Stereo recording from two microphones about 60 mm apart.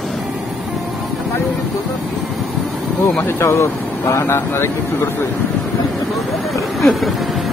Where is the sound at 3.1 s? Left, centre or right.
Left.